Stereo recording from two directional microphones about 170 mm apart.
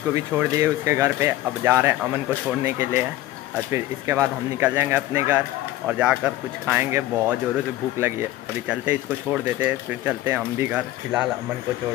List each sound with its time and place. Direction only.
0.1 s speech: 20° right (ahead or behind)